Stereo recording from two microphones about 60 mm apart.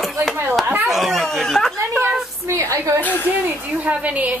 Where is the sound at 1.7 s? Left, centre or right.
Right.